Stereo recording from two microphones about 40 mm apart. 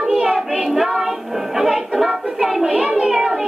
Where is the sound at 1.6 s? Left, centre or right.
Centre.